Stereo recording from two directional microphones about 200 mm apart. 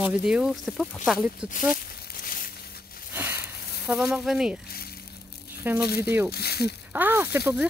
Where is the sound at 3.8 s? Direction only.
5° right (ahead or behind).